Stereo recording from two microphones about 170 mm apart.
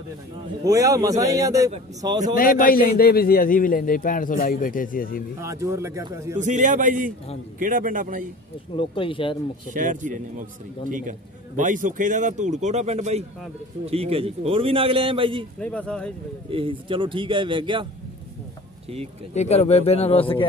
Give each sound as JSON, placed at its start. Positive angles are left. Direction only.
{"t": 0.7, "sound": "a man's voice", "side_deg": -20}
{"t": 2.3, "sound": "a man's voice", "side_deg": 55}
{"t": 5.4, "sound": "speech", "side_deg": -15}
{"t": 6.3, "sound": "a man's voice", "side_deg": -45}
{"t": 8.7, "sound": "a man's voice", "side_deg": 30}
{"t": 9.7, "sound": "a man's voice", "side_deg": -50}
{"t": 15.6, "sound": "speech", "side_deg": 5}
{"t": 16.4, "sound": "a man's voice", "side_deg": -30}
{"t": 19.3, "sound": "a man's voice", "side_deg": 40}